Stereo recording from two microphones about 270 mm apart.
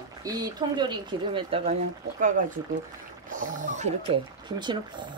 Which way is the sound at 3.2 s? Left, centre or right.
Right.